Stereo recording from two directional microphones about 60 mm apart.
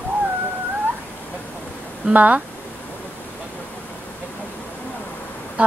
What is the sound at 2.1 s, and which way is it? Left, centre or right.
Speech, right.